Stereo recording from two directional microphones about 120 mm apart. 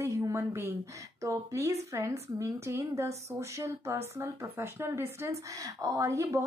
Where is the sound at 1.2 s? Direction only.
25° right (ahead or behind).